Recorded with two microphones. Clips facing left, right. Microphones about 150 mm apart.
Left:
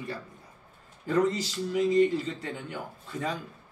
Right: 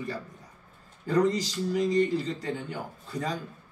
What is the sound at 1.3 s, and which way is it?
A man's voice, 40° right (ahead or behind).